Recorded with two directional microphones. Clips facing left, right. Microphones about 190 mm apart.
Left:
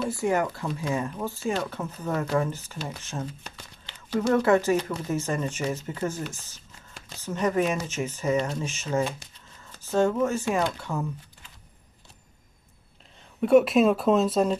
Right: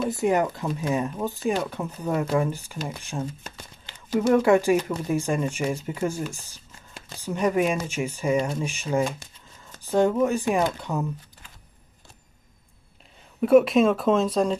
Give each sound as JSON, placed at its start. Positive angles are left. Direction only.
{"t": 0.1, "sound": "speech", "side_deg": -20}
{"t": 3.8, "sound": "a sound", "side_deg": -50}
{"t": 4.3, "sound": "speech", "side_deg": -15}
{"t": 13.4, "sound": "speech", "side_deg": 0}